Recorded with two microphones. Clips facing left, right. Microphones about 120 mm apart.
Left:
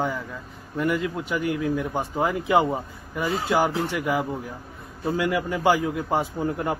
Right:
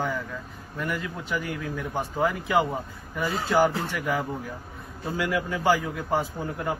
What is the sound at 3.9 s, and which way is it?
A man's voice, 20° left (ahead or behind).